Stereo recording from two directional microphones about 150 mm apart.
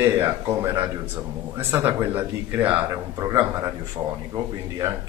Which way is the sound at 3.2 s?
25° right (ahead or behind).